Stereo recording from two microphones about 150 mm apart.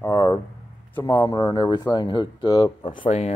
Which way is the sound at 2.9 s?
55° left (ahead or behind).